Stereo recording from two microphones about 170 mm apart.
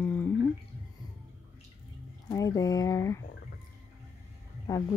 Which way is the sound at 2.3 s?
20° left (ahead or behind).